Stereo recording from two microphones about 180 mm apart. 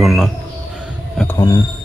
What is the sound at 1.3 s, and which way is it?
Speech, 20° left (ahead or behind).